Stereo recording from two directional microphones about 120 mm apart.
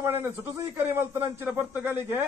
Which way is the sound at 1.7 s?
15° right (ahead or behind).